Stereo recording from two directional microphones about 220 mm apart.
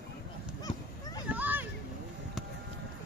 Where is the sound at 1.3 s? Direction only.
10° right (ahead or behind).